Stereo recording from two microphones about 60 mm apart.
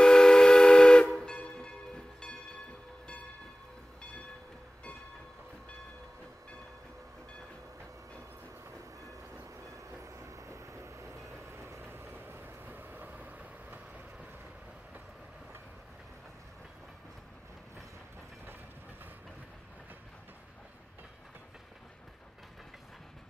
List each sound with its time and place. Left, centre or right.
0.0 s steam whistle: centre
1.2 s music: centre
10.0 s vehicle: right